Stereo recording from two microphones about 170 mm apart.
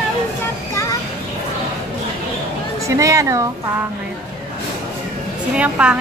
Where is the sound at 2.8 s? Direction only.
20° right (ahead or behind).